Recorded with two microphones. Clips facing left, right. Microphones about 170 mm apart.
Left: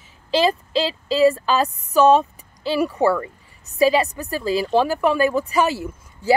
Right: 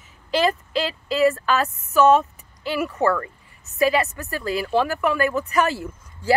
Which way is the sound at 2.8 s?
10° left (ahead or behind).